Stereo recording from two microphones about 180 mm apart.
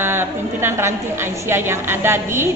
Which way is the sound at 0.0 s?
10° right (ahead or behind).